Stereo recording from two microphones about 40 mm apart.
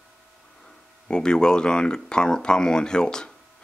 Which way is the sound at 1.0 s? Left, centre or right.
Left.